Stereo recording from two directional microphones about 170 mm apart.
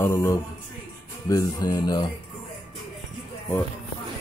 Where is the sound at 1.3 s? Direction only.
20° left (ahead or behind).